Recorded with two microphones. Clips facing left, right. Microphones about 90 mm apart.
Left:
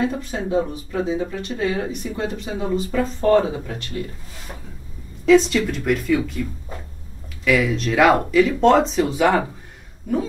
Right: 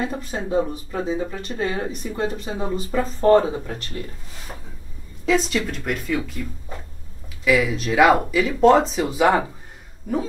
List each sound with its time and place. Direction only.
0.0 s speech: 35° right (ahead or behind)
5.2 s speech: centre (ahead or behind)
7.4 s speech: 5° right (ahead or behind)